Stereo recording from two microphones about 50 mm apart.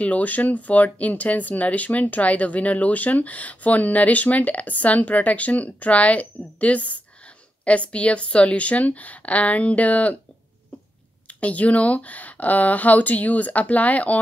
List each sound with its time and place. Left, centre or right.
0.0 s a woman's voice: left
11.3 s speech: left